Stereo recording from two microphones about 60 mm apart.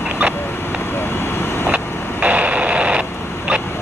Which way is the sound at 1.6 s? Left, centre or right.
Right.